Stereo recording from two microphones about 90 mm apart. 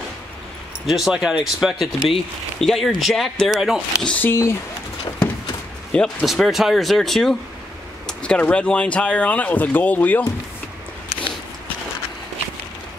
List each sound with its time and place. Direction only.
0.8 s speech: 5° right (ahead or behind)
4.0 s speech: 15° left (ahead or behind)
4.3 s speech: 30° left (ahead or behind)
5.9 s speech: 5° left (ahead or behind)